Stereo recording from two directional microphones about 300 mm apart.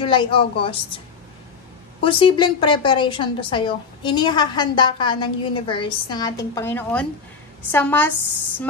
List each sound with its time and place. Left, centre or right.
0.0 s a woman's voice: centre
2.0 s a woman's voice: centre